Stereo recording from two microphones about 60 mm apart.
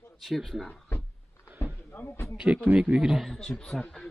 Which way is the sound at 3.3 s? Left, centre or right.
Centre.